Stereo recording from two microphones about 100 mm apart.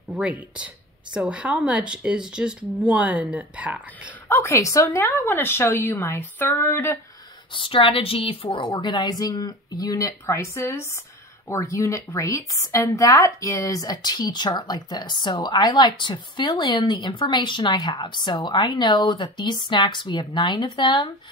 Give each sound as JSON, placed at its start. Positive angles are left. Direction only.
{"t": 1.1, "sound": "speech", "side_deg": -10}
{"t": 4.3, "sound": "a woman's voice", "side_deg": 25}
{"t": 7.5, "sound": "a woman's voice", "side_deg": 60}
{"t": 8.7, "sound": "speech", "side_deg": 40}